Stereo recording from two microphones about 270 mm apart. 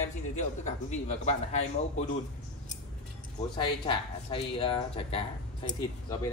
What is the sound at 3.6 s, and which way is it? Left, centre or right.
Speech, centre.